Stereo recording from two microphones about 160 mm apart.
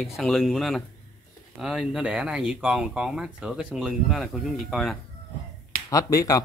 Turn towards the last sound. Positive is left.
turn(degrees=20)  # may be behind; listen again after turning